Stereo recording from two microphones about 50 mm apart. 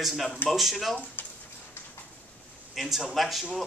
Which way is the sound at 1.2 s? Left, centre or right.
Left.